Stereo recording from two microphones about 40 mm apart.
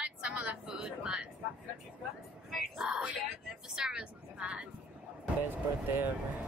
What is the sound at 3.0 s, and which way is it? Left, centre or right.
Vehicle, centre.